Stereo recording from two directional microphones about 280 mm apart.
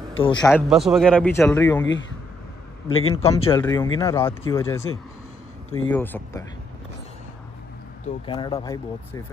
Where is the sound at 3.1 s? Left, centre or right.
Left.